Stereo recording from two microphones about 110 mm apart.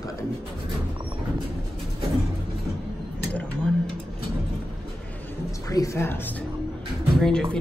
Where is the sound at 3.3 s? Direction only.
10° left (ahead or behind).